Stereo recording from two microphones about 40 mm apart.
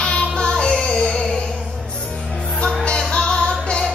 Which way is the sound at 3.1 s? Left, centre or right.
Left.